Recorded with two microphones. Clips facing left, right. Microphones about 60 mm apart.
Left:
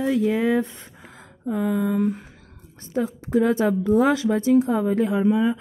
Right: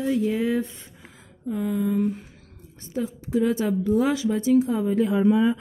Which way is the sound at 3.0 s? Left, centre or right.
Left.